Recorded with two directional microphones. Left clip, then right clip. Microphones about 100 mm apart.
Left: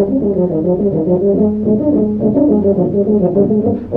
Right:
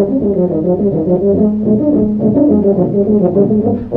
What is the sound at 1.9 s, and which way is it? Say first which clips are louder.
Brass instrument: right 1 dB; 30° left (ahead or behind).